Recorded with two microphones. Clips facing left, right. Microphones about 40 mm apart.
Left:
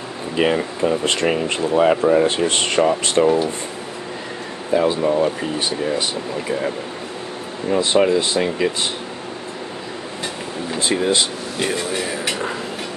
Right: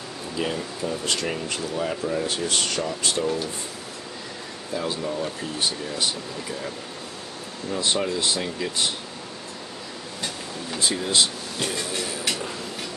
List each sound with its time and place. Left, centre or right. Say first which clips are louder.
0.4 s speech: left 10 dB; left
1.8 s speech: left 13 dB; left
4.7 s speech: left 11 dB; left
7.7 s speech: left 9 dB; left
10.8 s speech: left 5 dB; left